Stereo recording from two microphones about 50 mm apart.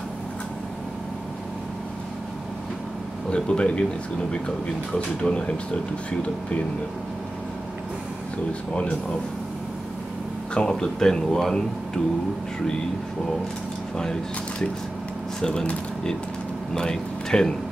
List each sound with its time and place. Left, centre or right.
3.3 s speech: centre
8.7 s speech: left
10.5 s speech: centre
16.7 s speech: centre